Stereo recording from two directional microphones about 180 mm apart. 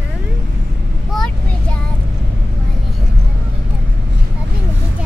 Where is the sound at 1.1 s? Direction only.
5° left (ahead or behind).